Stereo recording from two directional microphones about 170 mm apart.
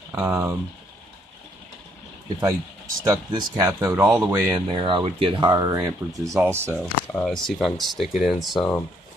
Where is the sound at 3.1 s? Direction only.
20° right (ahead or behind).